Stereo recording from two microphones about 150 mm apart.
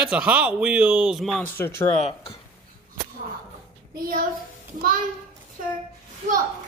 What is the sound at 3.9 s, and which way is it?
Speech, 70° right (ahead or behind).